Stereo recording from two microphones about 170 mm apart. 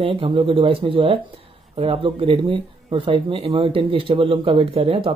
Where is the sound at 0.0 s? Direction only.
30° right (ahead or behind).